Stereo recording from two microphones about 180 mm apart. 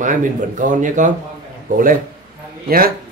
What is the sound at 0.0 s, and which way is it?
Speech, 45° right (ahead or behind).